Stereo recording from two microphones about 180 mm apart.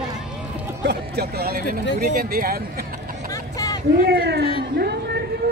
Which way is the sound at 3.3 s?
20° left (ahead or behind).